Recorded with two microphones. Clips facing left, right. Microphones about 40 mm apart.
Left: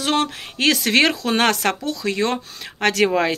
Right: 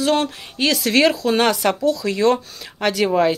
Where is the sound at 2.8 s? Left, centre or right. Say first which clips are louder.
Right 1 dB; left.